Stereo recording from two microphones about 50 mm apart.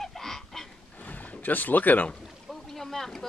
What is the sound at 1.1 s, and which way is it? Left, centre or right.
Speech, left.